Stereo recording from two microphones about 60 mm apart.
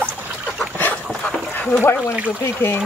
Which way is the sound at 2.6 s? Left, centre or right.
Left.